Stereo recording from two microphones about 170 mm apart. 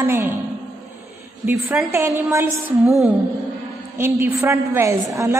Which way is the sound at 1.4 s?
10° right (ahead or behind).